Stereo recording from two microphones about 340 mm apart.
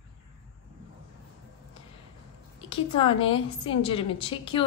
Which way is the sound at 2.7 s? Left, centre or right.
Centre.